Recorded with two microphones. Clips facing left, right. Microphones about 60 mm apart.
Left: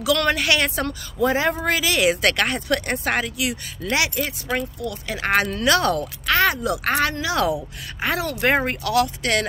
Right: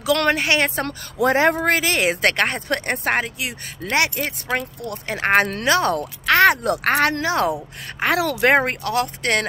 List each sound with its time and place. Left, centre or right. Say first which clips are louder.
0.0 s speech: right 1 dB; right
0.8 s speech: right 2 dB; right
1.6 s speech: right 1 dB; right
5.7 s speech: left 3 dB; right
6.2 s speech: right 5 dB; right
8.0 s speech: right 4 dB; right
8.8 s speech: left 1 dB; right